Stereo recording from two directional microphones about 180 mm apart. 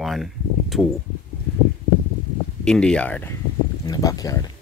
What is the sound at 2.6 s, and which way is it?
Speech, 5° left (ahead or behind).